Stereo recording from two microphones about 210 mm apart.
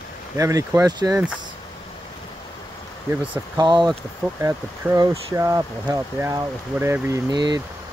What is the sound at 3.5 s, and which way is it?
Speech, 20° right (ahead or behind).